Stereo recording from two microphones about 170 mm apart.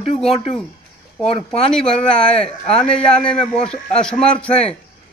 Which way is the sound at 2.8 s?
5° left (ahead or behind).